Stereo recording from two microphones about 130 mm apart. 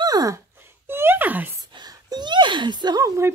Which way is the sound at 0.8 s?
15° right (ahead or behind).